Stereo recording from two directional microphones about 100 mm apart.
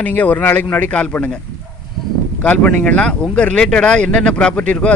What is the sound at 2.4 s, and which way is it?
A man's voice, 15° left (ahead or behind).